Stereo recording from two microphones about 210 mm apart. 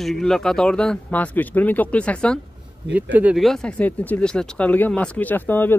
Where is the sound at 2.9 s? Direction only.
10° right (ahead or behind).